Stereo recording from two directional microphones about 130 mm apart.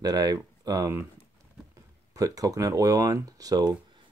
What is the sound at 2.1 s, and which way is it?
Speech, 25° right (ahead or behind).